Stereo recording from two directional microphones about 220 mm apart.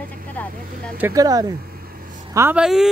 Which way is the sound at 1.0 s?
15° right (ahead or behind).